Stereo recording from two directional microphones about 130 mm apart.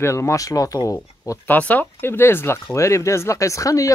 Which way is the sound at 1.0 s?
15° left (ahead or behind).